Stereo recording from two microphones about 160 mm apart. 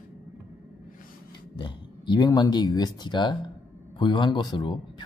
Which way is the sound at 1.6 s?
25° left (ahead or behind).